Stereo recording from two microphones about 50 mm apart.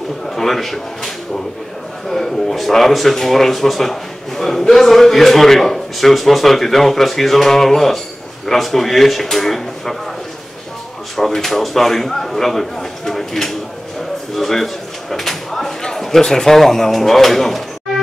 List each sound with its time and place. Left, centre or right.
0.3 s speech: centre
11.1 s speech: centre